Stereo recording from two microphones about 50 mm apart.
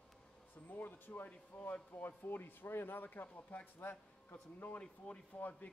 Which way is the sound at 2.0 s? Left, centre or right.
Left.